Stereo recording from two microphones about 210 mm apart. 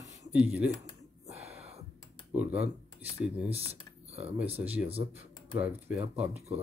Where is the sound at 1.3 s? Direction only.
30° right (ahead or behind).